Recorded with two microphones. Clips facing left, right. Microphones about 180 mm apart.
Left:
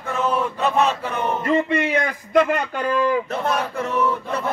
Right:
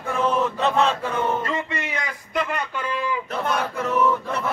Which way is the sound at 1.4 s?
55° left (ahead or behind).